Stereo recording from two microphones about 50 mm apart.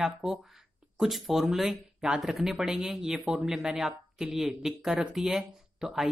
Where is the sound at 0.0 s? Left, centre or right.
Centre.